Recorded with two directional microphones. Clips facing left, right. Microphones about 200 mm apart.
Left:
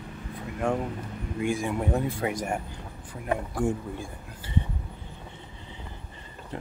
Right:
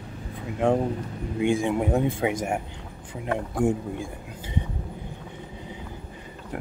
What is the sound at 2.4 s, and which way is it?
Speech, 10° right (ahead or behind).